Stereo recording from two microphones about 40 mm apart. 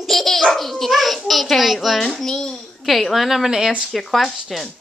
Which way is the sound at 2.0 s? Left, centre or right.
Centre.